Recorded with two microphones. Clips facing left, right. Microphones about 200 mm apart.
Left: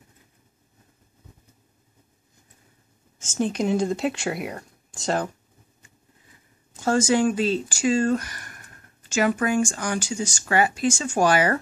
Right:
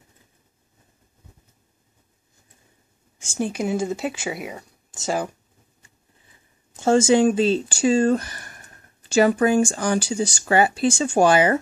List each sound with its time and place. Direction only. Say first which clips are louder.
3.2 s speech: left 1 dB; 10° right (ahead or behind)
6.8 s speech: right 4 dB; 25° right (ahead or behind)